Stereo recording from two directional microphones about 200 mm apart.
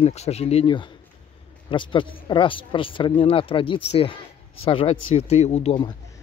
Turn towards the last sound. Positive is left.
turn(degrees=25)  # may be behind; listen again after turning